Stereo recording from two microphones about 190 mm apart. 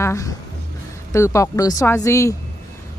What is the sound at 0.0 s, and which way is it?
A woman's voice, 15° left (ahead or behind).